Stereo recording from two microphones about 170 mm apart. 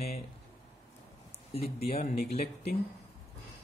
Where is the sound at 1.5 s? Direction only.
35° left (ahead or behind).